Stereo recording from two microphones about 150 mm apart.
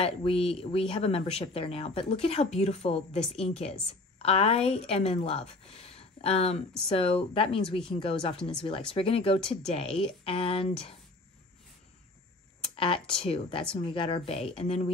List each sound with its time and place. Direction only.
0.0 s speech: 40° left (ahead or behind)
5.9 s a sound: 40° left (ahead or behind)
6.9 s speech: 40° left (ahead or behind)
12.7 s speech: 35° left (ahead or behind)